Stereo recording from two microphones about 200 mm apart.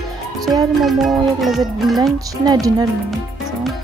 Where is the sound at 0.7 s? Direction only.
Centre (ahead or behind).